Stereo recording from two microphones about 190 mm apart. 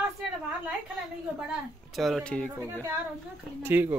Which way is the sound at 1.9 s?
Centre (ahead or behind).